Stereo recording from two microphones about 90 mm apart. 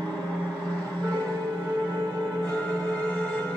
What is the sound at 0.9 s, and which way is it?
Music, 15° left (ahead or behind).